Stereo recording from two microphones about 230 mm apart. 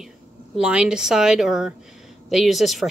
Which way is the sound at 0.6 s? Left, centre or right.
Centre.